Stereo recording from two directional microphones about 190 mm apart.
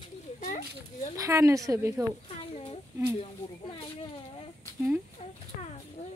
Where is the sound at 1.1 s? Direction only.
15° right (ahead or behind).